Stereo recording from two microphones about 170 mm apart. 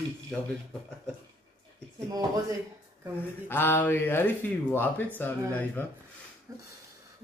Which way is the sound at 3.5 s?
10° left (ahead or behind).